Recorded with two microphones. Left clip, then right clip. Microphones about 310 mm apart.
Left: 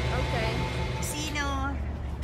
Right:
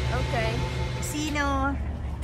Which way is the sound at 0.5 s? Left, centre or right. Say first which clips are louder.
Even; left.